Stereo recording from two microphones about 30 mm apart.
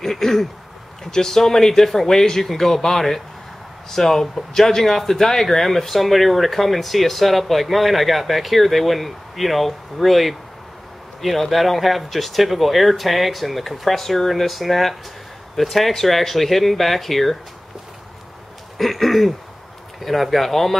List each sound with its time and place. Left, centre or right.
0.0 s speech: centre
18.8 s speech: centre